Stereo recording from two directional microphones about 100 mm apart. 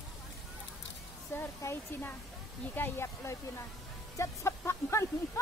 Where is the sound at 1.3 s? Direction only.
25° left (ahead or behind).